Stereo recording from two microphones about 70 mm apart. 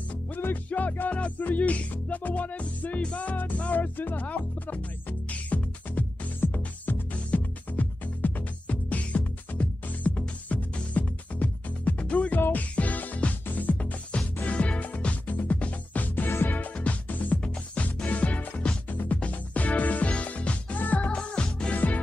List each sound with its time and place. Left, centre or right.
0.4 s music: left
12.4 s music: left